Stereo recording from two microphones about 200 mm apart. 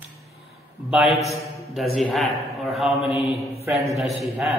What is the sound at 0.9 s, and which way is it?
Speech, centre (ahead or behind).